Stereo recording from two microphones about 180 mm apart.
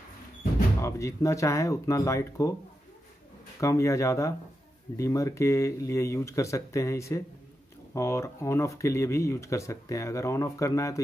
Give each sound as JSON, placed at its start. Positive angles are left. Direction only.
{"t": 0.7, "sound": "speech", "side_deg": 15}
{"t": 3.5, "sound": "speech", "side_deg": 15}